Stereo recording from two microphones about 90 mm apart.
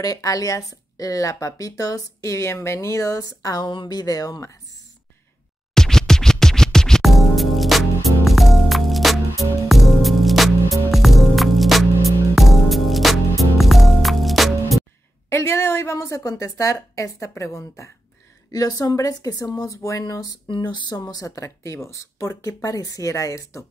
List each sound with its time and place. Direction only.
0.0 s speech: 40° left (ahead or behind)
3.6 s speech: 55° left (ahead or behind); by 4.6 s 40° left (ahead or behind)
5.8 s music: 5° left (ahead or behind)
15.2 s speech: 30° left (ahead or behind)
20.4 s a sound: 60° left (ahead or behind)
21.0 s speech: 40° left (ahead or behind)